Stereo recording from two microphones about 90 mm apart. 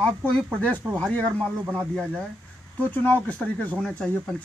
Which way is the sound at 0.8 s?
15° right (ahead or behind).